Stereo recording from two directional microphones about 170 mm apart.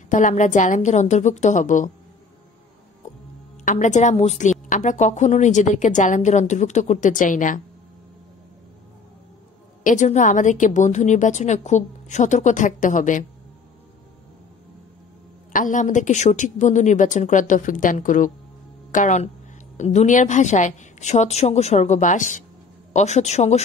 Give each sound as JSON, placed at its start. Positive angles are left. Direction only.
{"t": 0.1, "sound": "a woman's voice", "side_deg": 45}
{"t": 3.6, "sound": "a woman's voice", "side_deg": 45}
{"t": 9.8, "sound": "a woman's voice", "side_deg": 45}
{"t": 15.5, "sound": "a woman's voice", "side_deg": 50}